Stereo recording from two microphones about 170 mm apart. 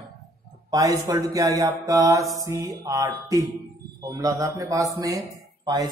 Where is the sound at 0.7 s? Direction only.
20° right (ahead or behind).